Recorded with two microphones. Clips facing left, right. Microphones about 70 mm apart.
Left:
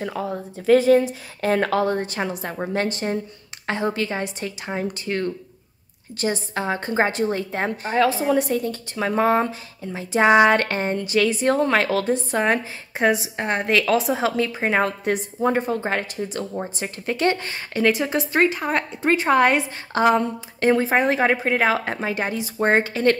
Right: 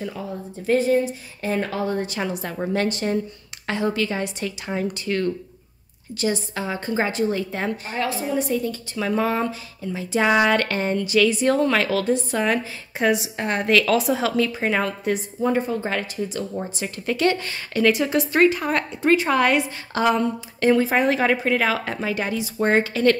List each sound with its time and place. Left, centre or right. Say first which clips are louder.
0.0 s speech: left 3 dB; left
2.0 s speech: even; left
2.2 s speech: right 1 dB; left
6.1 s speech: even; left
8.3 s speech: left 3 dB; left